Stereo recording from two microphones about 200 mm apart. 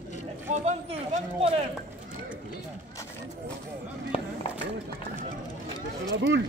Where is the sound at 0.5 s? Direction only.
35° right (ahead or behind).